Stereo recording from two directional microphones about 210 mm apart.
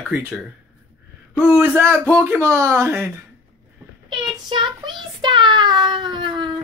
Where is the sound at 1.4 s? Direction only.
5° right (ahead or behind).